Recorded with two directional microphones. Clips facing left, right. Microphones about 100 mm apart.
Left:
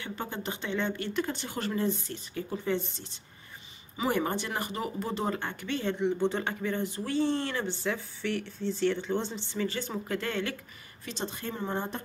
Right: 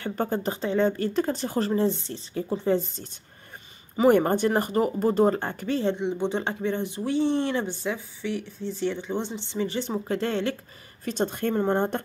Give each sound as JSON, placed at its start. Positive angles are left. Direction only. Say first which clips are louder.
{"t": 0.0, "sound": "speech", "louder": "right 9 dB", "side_deg": -45}
{"t": 5.9, "sound": "speech", "louder": "right 1 dB", "side_deg": -20}
{"t": 11.1, "sound": "speech", "louder": "right 10 dB", "side_deg": -50}